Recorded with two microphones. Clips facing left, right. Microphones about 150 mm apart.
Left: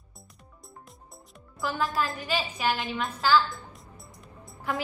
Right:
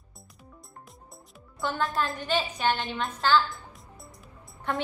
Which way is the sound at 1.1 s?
Centre (ahead or behind).